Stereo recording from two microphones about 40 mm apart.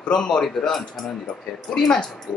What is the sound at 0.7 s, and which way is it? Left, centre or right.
Speech, centre.